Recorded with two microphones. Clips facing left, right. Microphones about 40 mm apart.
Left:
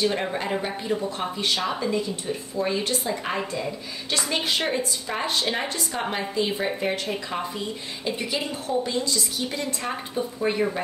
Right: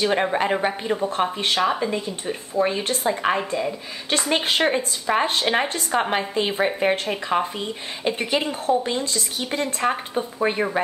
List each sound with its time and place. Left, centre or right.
0.0 s a woman's voice: right
1.6 s a woman's voice: right
3.3 s speech: centre
4.1 s a woman's voice: right